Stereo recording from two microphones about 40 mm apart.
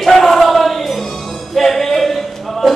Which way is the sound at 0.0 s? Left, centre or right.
Centre.